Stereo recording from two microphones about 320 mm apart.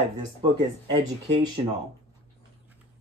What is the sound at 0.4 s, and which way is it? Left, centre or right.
Speech, centre.